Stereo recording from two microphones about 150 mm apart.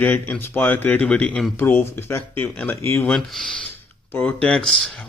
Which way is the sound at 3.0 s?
5° left (ahead or behind).